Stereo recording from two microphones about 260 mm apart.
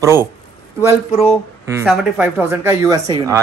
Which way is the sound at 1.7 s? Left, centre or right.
Centre.